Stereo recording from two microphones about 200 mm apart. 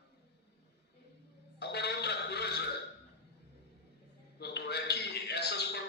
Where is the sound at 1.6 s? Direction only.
55° left (ahead or behind).